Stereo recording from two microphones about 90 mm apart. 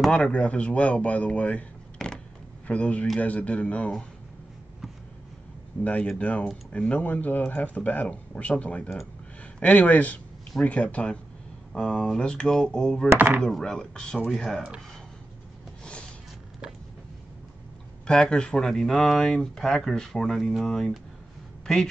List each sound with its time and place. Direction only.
0.1 s speech: 10° left (ahead or behind)
5.9 s a man's voice: 15° left (ahead or behind)
13.1 s speech: 20° right (ahead or behind)
13.4 s speech: 10° left (ahead or behind)
18.0 s speech: 10° left (ahead or behind)